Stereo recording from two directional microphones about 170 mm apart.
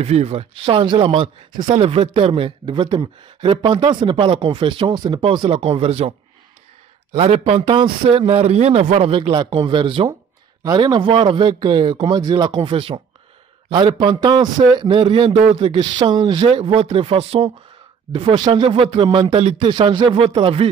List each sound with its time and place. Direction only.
0.0 s speech: 40° right (ahead or behind)